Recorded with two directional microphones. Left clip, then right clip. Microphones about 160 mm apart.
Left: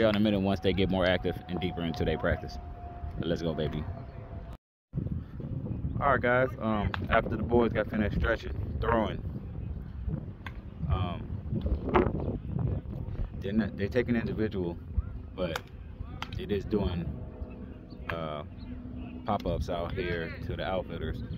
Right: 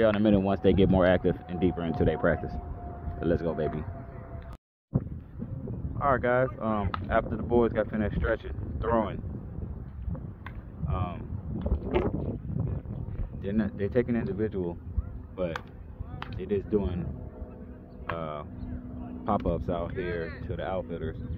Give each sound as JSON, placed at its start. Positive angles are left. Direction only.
{"t": 0.0, "sound": "speech", "side_deg": 0}
{"t": 5.9, "sound": "speech", "side_deg": 20}
{"t": 10.9, "sound": "wind noise", "side_deg": 15}
{"t": 11.6, "sound": "a sound", "side_deg": 0}
{"t": 13.4, "sound": "speech", "side_deg": 15}
{"t": 14.3, "sound": "speech", "side_deg": 30}
{"t": 16.3, "sound": "speech", "side_deg": 20}
{"t": 18.1, "sound": "speech", "side_deg": 15}